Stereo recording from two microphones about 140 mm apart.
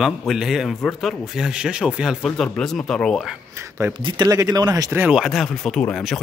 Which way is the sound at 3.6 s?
20° right (ahead or behind).